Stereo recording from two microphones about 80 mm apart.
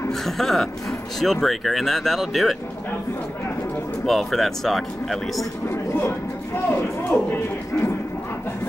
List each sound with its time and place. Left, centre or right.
0.1 s speech: centre
4.0 s speech: centre
5.7 s speech: left